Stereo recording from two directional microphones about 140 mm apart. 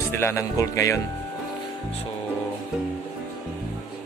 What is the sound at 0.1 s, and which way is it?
Speech, 20° left (ahead or behind).